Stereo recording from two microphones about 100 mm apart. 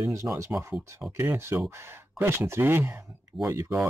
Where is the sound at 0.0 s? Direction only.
35° right (ahead or behind).